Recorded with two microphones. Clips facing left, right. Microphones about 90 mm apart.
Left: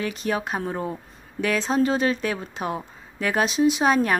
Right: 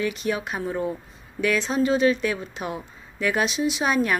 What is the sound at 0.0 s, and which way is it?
A woman's voice, 35° left (ahead or behind).